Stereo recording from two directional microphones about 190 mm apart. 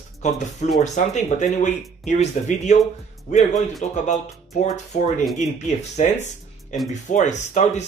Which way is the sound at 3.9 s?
40° left (ahead or behind).